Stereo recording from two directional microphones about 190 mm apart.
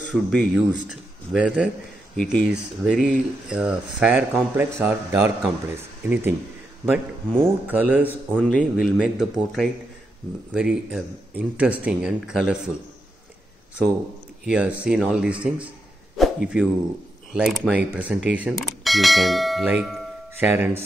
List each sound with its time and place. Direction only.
0.1 s a man's voice: 5° left (ahead or behind)
8.4 s speech: 5° left (ahead or behind)
10.5 s speech: 5° right (ahead or behind)
14.4 s speech: 5° right (ahead or behind)